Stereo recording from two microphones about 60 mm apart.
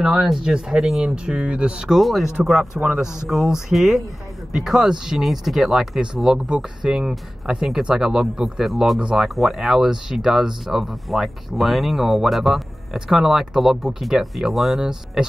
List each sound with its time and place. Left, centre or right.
0.0 s speech: centre
1.9 s speech: centre